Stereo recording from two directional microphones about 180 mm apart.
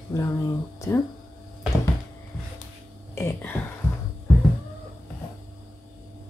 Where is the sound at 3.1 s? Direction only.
15° left (ahead or behind).